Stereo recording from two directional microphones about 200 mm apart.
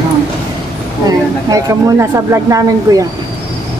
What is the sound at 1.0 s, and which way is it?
Speech, 15° right (ahead or behind).